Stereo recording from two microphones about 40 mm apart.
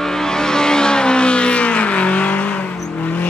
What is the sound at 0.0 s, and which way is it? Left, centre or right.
Vehicle, centre.